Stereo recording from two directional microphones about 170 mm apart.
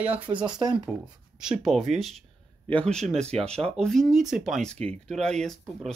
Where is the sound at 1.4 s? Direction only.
Centre (ahead or behind).